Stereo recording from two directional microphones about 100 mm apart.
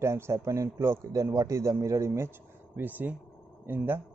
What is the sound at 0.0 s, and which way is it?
A man's voice, 25° right (ahead or behind).